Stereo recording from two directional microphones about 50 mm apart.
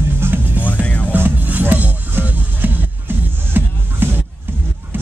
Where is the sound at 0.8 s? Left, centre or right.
Left.